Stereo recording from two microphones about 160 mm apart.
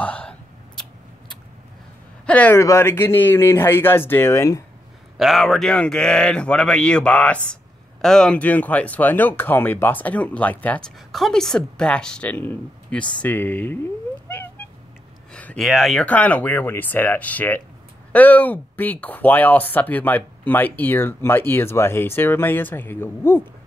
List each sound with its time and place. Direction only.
0.0 s a sound: 10° left (ahead or behind)
2.2 s speech: 10° left (ahead or behind)
5.1 s speech: centre (ahead or behind)
15.3 s speech: 5° left (ahead or behind)